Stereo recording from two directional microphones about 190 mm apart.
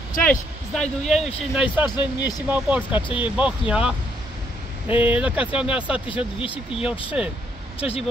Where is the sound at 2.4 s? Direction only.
10° right (ahead or behind).